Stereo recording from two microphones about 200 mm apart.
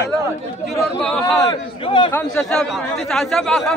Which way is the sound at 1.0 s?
Centre (ahead or behind).